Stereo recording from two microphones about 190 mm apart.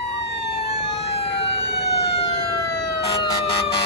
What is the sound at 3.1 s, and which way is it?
Emergency vehicle, 25° left (ahead or behind).